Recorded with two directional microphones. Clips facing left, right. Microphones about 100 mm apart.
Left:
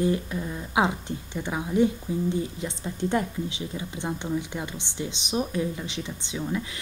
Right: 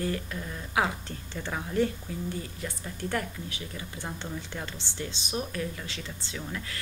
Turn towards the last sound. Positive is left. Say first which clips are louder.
# left 7 dB
turn(degrees=15)  # may be behind; listen again after turning